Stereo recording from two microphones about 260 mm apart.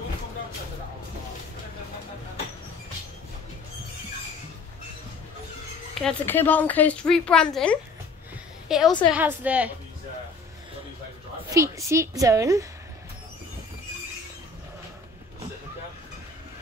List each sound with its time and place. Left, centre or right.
6.0 s a woman's voice: centre
11.5 s a woman's voice: centre